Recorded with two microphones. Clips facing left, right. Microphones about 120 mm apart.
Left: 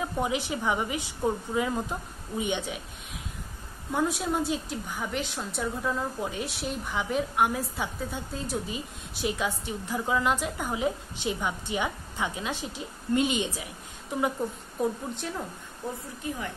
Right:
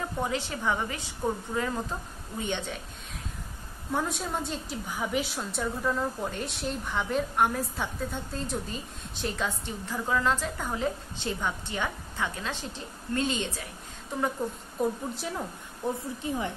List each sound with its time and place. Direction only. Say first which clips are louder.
0.0 s a woman's voice: left 2 dB; 15° left (ahead or behind)
3.9 s a woman's voice: left 3 dB; centre (ahead or behind)
14.8 s a woman's voice: even; centre (ahead or behind)
15.8 s a woman's voice: right 3 dB; 20° right (ahead or behind)